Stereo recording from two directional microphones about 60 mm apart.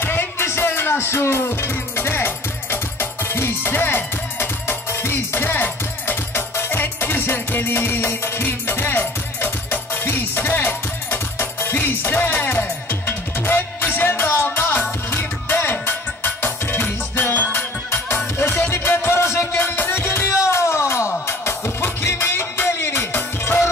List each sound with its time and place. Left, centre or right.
0.0 s music: left
20.2 s music: left